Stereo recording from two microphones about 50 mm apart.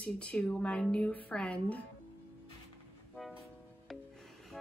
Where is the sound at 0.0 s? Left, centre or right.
Left.